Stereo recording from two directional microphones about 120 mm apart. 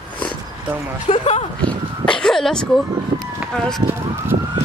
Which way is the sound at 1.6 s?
10° left (ahead or behind).